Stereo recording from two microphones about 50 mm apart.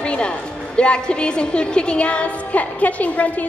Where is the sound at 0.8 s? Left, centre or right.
Centre.